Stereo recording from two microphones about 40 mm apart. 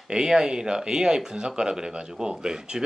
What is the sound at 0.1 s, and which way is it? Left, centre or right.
Speech, centre.